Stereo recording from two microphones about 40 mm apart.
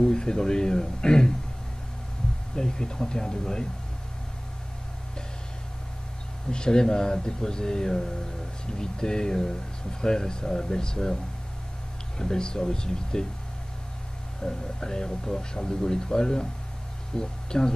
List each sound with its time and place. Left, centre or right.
0.0 s speech: centre
2.5 s speech: centre
6.5 s speech: centre
12.2 s speech: centre
14.4 s speech: centre